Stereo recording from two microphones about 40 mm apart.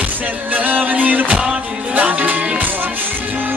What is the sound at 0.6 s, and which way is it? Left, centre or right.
Music, right.